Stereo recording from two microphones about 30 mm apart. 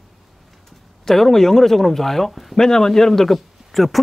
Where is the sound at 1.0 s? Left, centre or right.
Centre.